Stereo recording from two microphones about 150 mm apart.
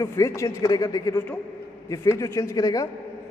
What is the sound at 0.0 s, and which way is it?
A man's voice, 20° left (ahead or behind).